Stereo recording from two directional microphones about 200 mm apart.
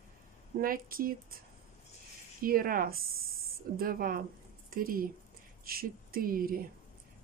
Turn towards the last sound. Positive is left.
turn(degrees=-45)  # may be behind; listen again after turning